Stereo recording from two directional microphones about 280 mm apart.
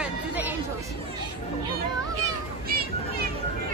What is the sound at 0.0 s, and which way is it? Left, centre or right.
Chatter, centre.